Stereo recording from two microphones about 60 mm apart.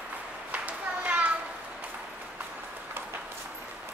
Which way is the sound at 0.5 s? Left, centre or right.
Right.